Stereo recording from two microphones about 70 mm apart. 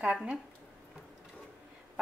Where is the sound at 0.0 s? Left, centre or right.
Centre.